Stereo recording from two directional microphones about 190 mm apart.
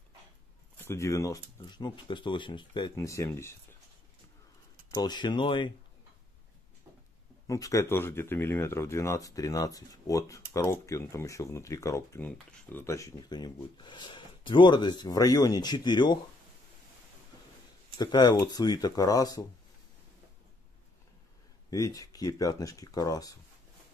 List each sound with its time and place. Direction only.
0.7 s speech: 15° left (ahead or behind)
4.9 s speech: 25° left (ahead or behind)
7.4 s speech: 15° left (ahead or behind)
17.9 s speech: 20° left (ahead or behind)
21.6 s speech: 15° left (ahead or behind)